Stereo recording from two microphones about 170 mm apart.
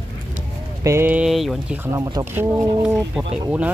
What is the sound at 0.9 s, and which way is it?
Speech, 15° right (ahead or behind).